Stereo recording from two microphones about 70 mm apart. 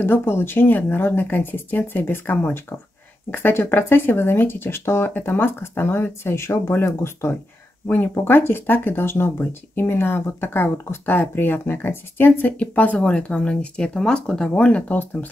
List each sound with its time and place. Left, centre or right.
0.0 s speech: left